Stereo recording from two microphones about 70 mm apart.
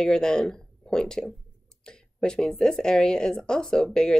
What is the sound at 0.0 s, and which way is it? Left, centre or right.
Speech, centre.